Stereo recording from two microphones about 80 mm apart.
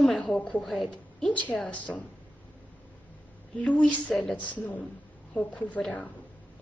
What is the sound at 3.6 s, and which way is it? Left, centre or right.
A woman's voice, centre.